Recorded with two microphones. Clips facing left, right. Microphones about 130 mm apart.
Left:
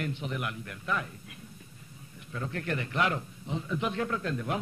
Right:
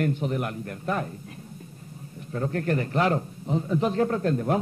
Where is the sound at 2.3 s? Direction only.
40° right (ahead or behind).